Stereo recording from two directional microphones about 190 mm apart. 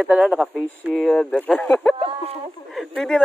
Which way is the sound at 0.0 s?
5° right (ahead or behind).